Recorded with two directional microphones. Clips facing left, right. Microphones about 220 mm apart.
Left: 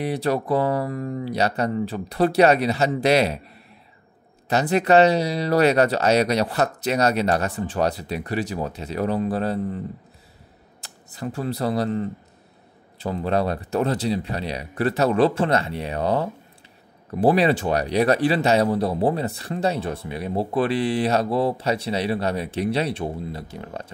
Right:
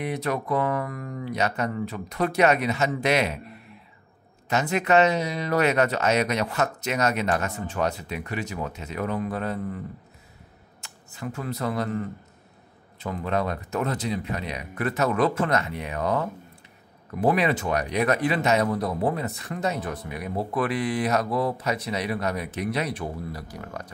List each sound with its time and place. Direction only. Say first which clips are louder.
0.0 s speech: left 4 dB; 35° left (ahead or behind)
4.5 s speech: left 4 dB; 35° left (ahead or behind)
10.8 s speech: left 4 dB; 35° left (ahead or behind)